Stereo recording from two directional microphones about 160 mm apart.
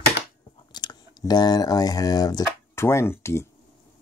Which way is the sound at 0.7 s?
25° left (ahead or behind).